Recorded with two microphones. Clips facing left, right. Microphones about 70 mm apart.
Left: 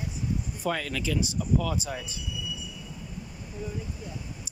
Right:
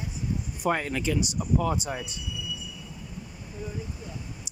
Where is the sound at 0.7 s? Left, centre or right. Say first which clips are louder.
Right 3 dB; right.